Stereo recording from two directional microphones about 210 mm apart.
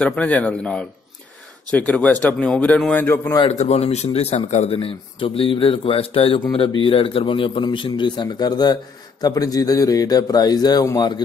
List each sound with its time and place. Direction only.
0.0 s a man's voice: 5° left (ahead or behind)
3.3 s a man's voice: 30° left (ahead or behind)